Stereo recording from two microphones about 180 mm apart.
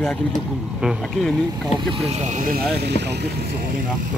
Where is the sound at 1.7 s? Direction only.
30° right (ahead or behind); by 3.5 s 65° right (ahead or behind).